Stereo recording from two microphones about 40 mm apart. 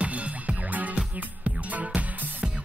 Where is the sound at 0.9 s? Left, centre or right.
Right.